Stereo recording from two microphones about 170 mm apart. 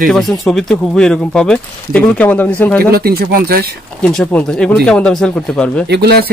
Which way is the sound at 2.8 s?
65° right (ahead or behind).